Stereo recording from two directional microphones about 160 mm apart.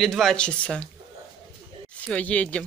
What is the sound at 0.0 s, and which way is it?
Speech, centre (ahead or behind).